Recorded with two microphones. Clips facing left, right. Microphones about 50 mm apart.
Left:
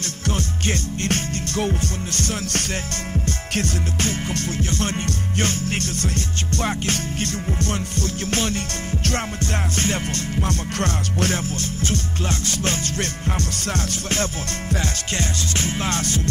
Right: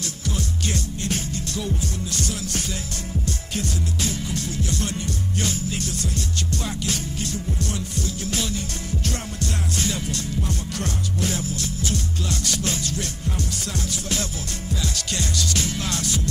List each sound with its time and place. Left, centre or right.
0.0 s music: left